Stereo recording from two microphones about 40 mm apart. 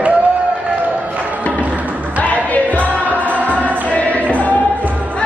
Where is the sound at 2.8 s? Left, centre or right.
Right.